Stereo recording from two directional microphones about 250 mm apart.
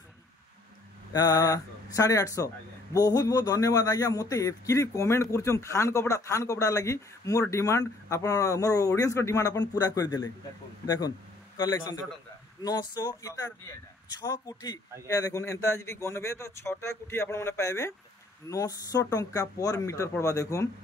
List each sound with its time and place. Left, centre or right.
1.1 s a man's voice: centre